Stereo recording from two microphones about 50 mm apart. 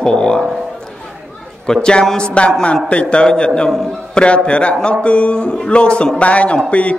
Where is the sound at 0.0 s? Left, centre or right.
Centre.